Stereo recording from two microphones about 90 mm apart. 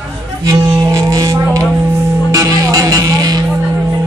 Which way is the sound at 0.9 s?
40° right (ahead or behind).